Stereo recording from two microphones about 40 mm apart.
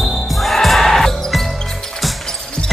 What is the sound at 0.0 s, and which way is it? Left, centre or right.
Music, centre.